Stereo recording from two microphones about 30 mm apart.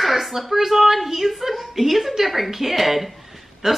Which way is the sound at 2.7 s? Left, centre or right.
Centre.